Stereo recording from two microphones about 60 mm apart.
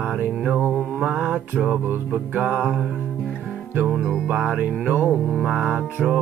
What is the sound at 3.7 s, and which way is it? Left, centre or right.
Music, right.